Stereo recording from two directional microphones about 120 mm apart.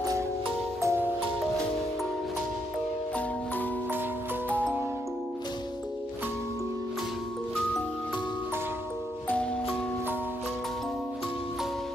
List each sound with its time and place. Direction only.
0.7 s music: 25° right (ahead or behind)
9.3 s music: 10° left (ahead or behind)